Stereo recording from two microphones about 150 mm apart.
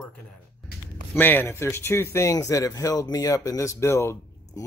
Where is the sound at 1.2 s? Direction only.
15° left (ahead or behind).